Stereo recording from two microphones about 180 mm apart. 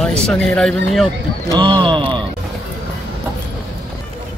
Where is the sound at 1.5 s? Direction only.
25° right (ahead or behind).